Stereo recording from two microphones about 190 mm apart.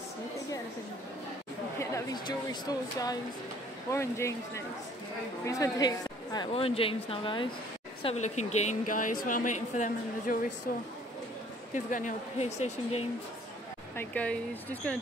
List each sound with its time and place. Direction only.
1.8 s a woman's voice: 20° left (ahead or behind); by 13.0 s 35° left (ahead or behind)
13.9 s speech: 10° left (ahead or behind)